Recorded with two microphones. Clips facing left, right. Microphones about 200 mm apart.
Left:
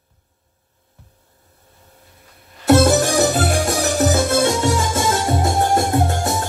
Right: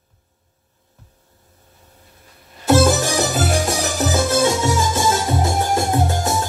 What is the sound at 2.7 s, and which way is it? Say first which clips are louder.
Music: left 2 dB; 60° left (ahead or behind).